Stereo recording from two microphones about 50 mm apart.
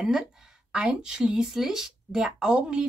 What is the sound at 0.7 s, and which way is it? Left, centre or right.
Speech, centre.